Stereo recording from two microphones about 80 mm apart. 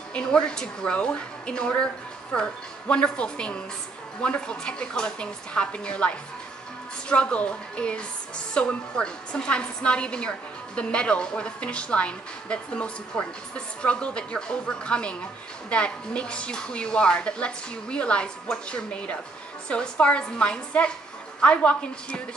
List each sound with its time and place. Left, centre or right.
0.1 s a woman's voice: centre